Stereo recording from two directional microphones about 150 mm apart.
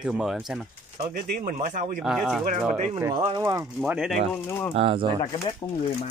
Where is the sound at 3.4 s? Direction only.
20° right (ahead or behind).